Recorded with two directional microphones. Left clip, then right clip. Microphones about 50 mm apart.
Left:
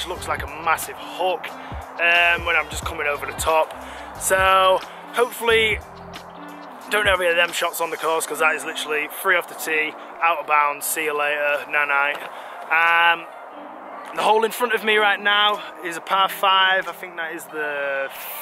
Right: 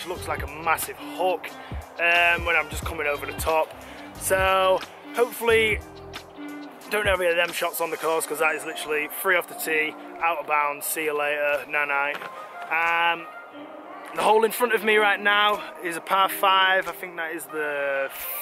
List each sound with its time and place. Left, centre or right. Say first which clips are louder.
0.0 s speech: left 4 dB; centre
6.9 s speech: left 4 dB; centre
9.7 s speech: left 2 dB; centre
10.2 s speech: left 5 dB; centre
14.1 s speech: left 1 dB; centre